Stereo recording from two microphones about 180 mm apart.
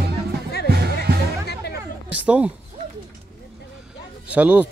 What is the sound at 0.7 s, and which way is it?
Music, 60° right (ahead or behind).